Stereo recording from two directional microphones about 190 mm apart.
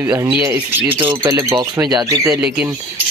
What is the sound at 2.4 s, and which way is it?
Speech, 5° right (ahead or behind).